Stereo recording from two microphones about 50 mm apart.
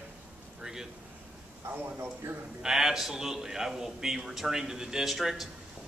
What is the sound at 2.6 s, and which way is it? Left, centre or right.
A man's voice, centre.